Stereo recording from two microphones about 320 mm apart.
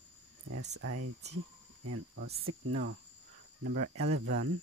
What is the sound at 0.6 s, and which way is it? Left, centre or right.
Speech, right.